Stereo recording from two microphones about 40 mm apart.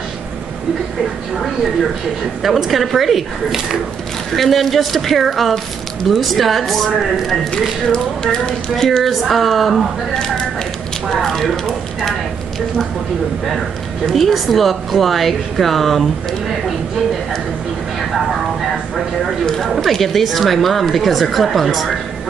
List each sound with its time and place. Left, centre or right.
2.4 s speech: centre
7.9 s speech: centre
9.0 s speech: centre
10.1 s speech: centre
14.1 s speech: centre
19.4 s speech: centre
19.8 s speech: centre